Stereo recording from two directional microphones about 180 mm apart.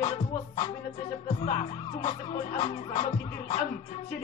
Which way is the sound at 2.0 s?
30° left (ahead or behind).